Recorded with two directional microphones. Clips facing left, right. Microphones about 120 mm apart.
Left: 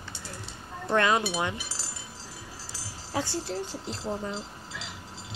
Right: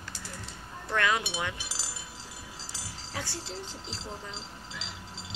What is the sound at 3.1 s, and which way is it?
Speech, 25° left (ahead or behind).